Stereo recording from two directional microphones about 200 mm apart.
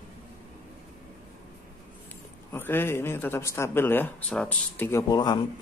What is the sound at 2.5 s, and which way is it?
Speech, 10° left (ahead or behind).